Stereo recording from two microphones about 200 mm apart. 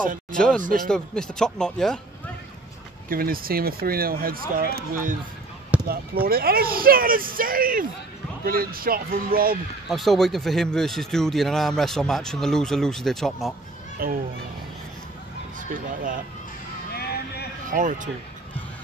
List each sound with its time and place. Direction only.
0.6 s speech: 40° right (ahead or behind)
0.8 s speech: 5° left (ahead or behind)
3.1 s speech: 45° right (ahead or behind)
9.8 s speech: centre (ahead or behind)
14.0 s speech: 45° right (ahead or behind)
15.5 s speech: 40° right (ahead or behind)
16.9 s a sound: 50° left (ahead or behind)
17.6 s speech: 40° right (ahead or behind)